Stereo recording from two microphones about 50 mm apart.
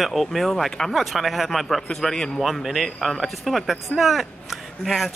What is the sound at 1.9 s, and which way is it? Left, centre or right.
A man's voice, centre.